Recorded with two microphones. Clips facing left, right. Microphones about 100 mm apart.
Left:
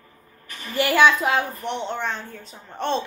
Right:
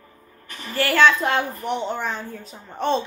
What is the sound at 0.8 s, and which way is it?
Speech, 15° left (ahead or behind).